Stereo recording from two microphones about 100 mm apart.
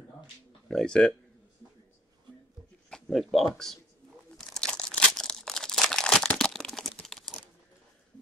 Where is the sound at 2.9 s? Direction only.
Centre (ahead or behind).